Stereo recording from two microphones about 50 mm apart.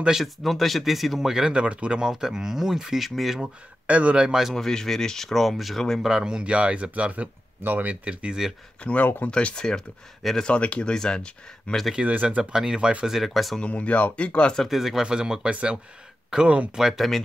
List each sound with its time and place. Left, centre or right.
0.1 s speech: centre
1.3 s speech: centre
3.8 s speech: right
4.3 s speech: centre
4.6 s speech: centre
6.0 s speech: centre
7.6 s speech: right
8.8 s speech: left
9.3 s speech: centre
10.5 s speech: left
11.9 s speech: right
12.5 s speech: centre
13.6 s speech: left
14.6 s speech: centre